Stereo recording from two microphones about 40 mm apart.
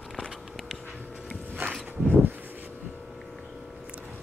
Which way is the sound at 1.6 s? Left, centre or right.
Right.